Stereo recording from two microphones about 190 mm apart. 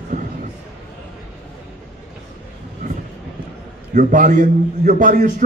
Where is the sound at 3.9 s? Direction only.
45° right (ahead or behind).